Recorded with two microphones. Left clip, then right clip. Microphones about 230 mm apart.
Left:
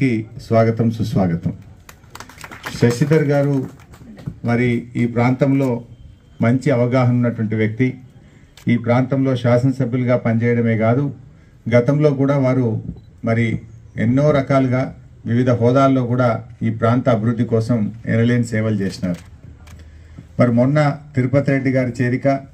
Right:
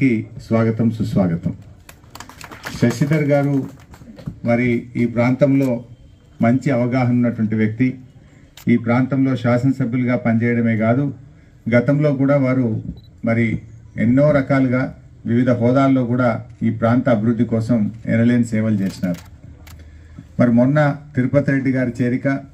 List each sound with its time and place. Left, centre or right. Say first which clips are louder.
0.0 s a man's voice: right 1 dB; left
2.8 s a man's voice: left 4 dB; left
4.5 s a man's voice: right 1 dB; left
20.3 s a man's voice: even; left